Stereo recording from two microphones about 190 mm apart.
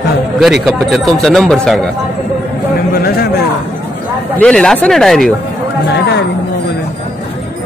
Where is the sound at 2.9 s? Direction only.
50° left (ahead or behind).